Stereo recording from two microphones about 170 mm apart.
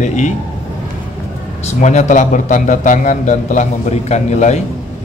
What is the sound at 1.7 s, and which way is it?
A man's voice, 45° left (ahead or behind).